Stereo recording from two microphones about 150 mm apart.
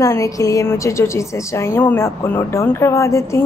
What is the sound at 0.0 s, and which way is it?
A woman's voice, 20° left (ahead or behind).